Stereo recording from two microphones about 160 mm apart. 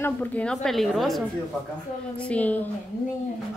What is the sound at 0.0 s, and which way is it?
A woman's voice, 10° left (ahead or behind).